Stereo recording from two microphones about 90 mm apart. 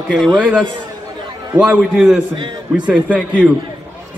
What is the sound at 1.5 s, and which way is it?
A man's voice, 20° right (ahead or behind).